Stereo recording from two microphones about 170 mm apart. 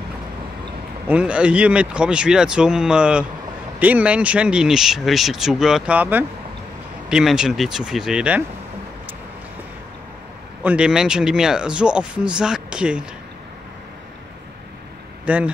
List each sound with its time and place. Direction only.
1.0 s speech: 5° right (ahead or behind)
10.6 s speech: 5° right (ahead or behind)
15.2 s speech: 10° right (ahead or behind)